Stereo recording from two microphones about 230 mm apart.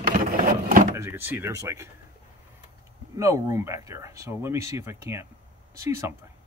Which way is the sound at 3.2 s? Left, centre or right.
Centre.